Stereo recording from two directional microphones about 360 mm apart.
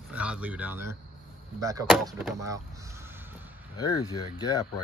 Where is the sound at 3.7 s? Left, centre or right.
Centre.